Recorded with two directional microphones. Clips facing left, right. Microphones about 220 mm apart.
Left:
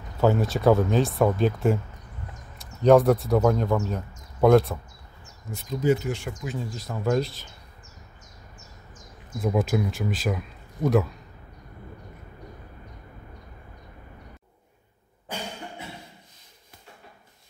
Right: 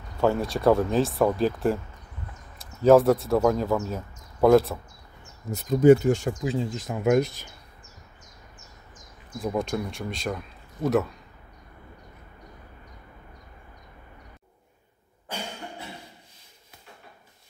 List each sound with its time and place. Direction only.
0.2 s speech: centre (ahead or behind)
5.5 s speech: 50° right (ahead or behind)
6.4 s speech: 25° right (ahead or behind)
9.4 s speech: 5° left (ahead or behind)